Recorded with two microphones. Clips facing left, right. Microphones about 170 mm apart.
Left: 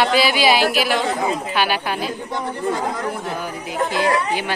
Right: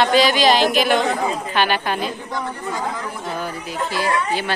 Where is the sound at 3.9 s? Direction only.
20° left (ahead or behind).